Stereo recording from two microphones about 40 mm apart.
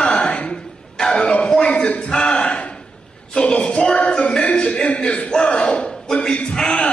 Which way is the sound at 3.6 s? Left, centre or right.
Centre.